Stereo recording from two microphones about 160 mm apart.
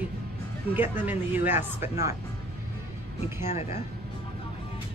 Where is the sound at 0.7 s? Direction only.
10° right (ahead or behind).